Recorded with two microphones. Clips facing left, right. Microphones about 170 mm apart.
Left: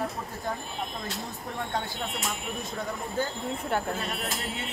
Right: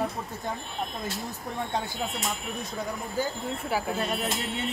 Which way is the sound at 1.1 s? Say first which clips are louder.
Right 1 dB; centre (ahead or behind).